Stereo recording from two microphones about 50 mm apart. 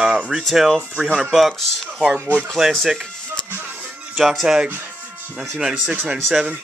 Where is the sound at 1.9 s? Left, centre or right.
Centre.